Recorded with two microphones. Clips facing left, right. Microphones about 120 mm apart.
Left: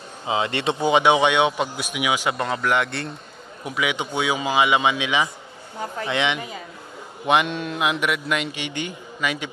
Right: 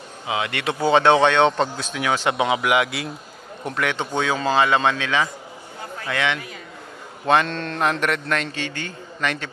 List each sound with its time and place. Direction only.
0.3 s a man's voice: 30° left (ahead or behind); by 2.3 s 10° left (ahead or behind)
2.3 s a man's voice: 5° right (ahead or behind)
3.6 s a man's voice: 5° left (ahead or behind)